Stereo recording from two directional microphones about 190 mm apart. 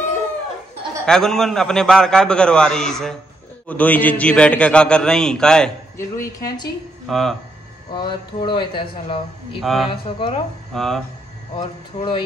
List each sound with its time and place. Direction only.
1.0 s a man's voice: 5° left (ahead or behind)
5.9 s speech: 15° left (ahead or behind)
7.1 s a man's voice: centre (ahead or behind)
7.9 s a man's voice: 25° left (ahead or behind)
9.6 s a man's voice: centre (ahead or behind)
9.8 s a man's voice: 25° left (ahead or behind)
10.7 s hum: centre (ahead or behind)
11.5 s a man's voice: 25° left (ahead or behind)